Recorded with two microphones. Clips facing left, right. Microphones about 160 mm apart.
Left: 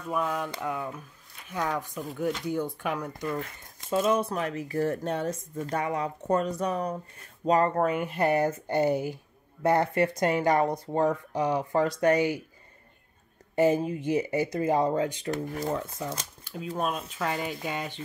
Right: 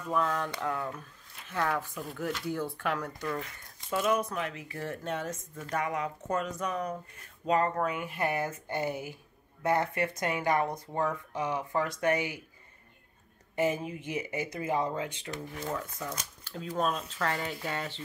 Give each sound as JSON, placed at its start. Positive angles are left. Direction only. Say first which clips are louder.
{"t": 0.1, "sound": "speech", "louder": "left 1 dB", "side_deg": 10}
{"t": 3.9, "sound": "speech", "louder": "left 4 dB", "side_deg": 30}
{"t": 13.6, "sound": "speech", "louder": "left 6 dB", "side_deg": 35}
{"t": 16.7, "sound": "speech", "louder": "even", "side_deg": 10}